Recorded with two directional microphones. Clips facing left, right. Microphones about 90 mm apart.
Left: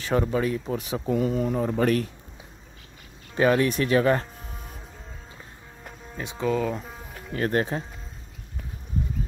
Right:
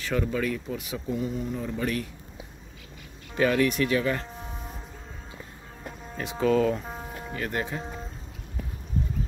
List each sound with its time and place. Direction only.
0.1 s speech: 35° left (ahead or behind)
0.7 s speech: 40° left (ahead or behind)
1.0 s speech: 70° left (ahead or behind)
1.6 s speech: 55° left (ahead or behind)
3.3 s speech: 30° left (ahead or behind)
6.4 s speech: 5° left (ahead or behind)
7.3 s speech: 45° left (ahead or behind)